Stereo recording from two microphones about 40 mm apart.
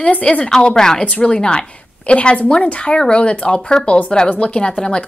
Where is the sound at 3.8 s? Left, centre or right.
Left.